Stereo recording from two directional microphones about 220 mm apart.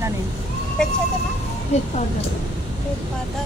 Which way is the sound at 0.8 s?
5° left (ahead or behind).